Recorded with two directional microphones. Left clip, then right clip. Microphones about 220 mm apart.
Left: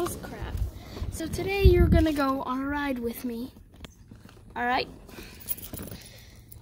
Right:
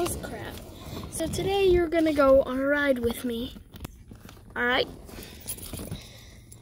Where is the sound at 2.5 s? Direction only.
10° left (ahead or behind).